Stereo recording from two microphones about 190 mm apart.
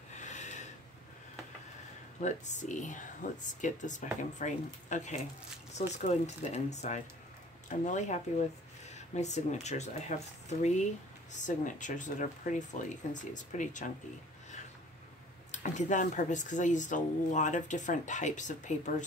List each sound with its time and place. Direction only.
0.1 s snort: 40° left (ahead or behind)
2.2 s speech: 40° left (ahead or behind)
15.5 s speech: 40° left (ahead or behind)